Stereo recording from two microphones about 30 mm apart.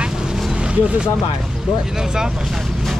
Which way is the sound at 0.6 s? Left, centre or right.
Right.